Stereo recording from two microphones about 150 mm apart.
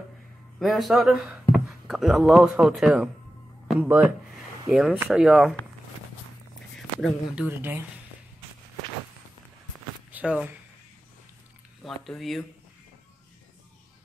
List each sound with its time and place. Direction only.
0.6 s speech: centre (ahead or behind)
7.0 s speech: centre (ahead or behind)
7.4 s speech: 15° right (ahead or behind)
10.1 s speech: 10° right (ahead or behind)
11.8 s speech: centre (ahead or behind)